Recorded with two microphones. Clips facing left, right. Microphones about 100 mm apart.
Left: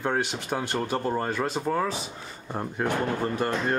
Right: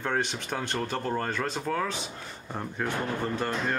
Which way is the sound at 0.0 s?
10° left (ahead or behind).